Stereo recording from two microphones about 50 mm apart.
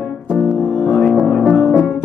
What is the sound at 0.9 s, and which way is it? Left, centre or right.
Music, centre.